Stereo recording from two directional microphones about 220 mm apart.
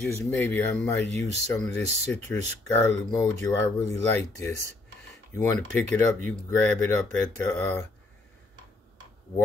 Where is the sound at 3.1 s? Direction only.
15° left (ahead or behind).